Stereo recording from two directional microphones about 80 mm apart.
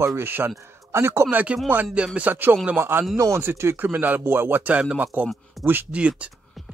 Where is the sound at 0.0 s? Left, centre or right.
Right.